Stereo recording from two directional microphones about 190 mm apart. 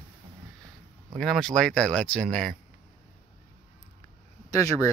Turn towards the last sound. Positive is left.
turn(degrees=15)  # may be behind; listen again after turning